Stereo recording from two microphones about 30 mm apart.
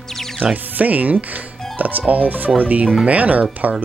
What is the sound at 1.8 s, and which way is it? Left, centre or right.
Speech, right.